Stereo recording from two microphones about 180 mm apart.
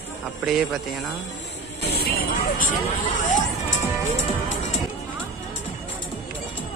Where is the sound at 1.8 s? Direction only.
60° left (ahead or behind).